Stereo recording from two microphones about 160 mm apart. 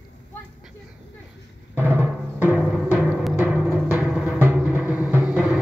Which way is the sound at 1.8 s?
10° right (ahead or behind).